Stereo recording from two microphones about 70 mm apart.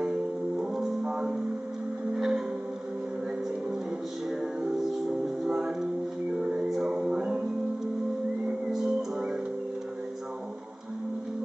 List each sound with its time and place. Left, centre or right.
0.0 s music: centre
5.5 s music: centre
8.5 s music: centre